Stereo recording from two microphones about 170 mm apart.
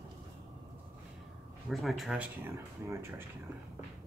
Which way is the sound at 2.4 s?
15° right (ahead or behind).